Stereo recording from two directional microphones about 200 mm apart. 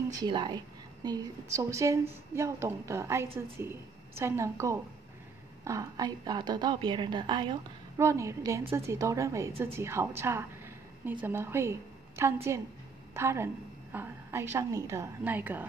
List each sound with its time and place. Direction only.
0.1 s a woman's voice: 20° right (ahead or behind)